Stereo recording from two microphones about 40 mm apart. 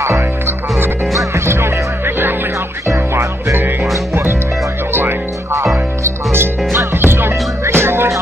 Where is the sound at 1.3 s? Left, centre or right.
Right.